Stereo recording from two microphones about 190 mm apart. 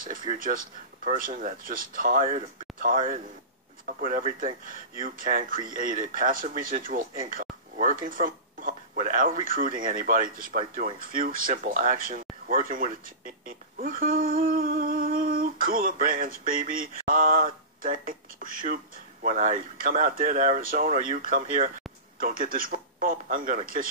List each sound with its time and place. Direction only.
0.3 s speech: 45° right (ahead or behind)